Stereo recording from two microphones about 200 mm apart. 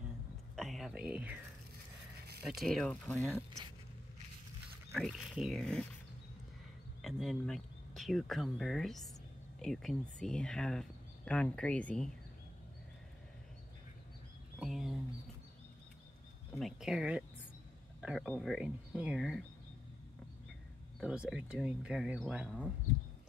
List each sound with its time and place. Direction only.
0.6 s speech: centre (ahead or behind)
2.4 s speech: centre (ahead or behind)
4.9 s speech: centre (ahead or behind)
7.0 s speech: centre (ahead or behind)
14.6 s a sound: centre (ahead or behind)
16.5 s speech: centre (ahead or behind)
21.0 s speech: 5° right (ahead or behind)